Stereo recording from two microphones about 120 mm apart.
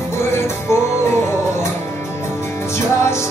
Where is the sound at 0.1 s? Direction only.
20° left (ahead or behind).